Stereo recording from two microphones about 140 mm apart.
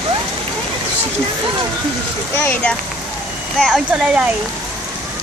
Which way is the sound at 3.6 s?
5° right (ahead or behind).